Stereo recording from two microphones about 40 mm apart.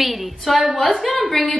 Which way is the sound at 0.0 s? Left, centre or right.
Centre.